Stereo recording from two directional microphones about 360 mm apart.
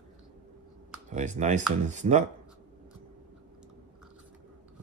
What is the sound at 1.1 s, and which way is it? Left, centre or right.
Speech, centre.